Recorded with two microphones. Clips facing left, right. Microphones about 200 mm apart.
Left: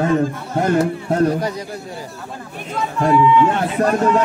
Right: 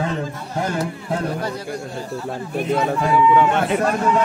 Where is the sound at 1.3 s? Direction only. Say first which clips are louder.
Left 3 dB; 15° left (ahead or behind).